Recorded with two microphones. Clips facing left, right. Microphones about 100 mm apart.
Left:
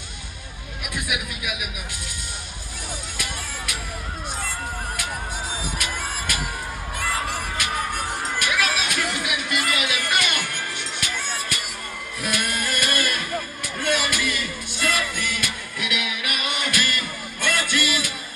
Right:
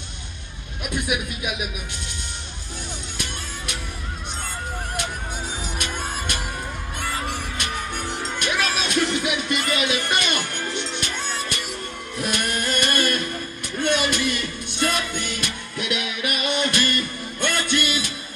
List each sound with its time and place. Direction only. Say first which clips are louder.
0.9 s speech: right 4 dB; 30° right (ahead or behind)
8.4 s music: even; 30° right (ahead or behind)